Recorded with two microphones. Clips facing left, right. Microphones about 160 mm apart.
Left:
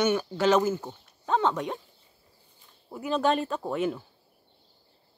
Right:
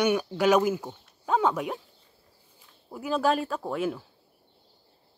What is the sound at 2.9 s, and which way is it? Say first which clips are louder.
Speech: even; 5° right (ahead or behind).